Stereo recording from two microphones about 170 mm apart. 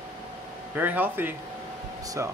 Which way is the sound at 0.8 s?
10° right (ahead or behind).